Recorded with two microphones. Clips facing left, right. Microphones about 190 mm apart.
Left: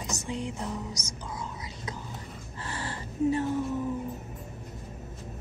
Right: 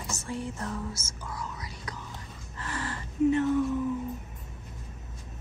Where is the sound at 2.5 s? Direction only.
30° left (ahead or behind).